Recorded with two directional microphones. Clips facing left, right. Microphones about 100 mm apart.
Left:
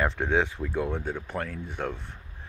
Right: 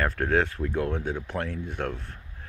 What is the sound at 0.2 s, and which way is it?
Speech, 5° left (ahead or behind).